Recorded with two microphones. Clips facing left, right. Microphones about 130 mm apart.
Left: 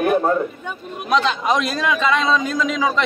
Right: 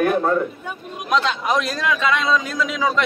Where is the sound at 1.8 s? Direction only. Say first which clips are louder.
Left 2 dB; centre (ahead or behind).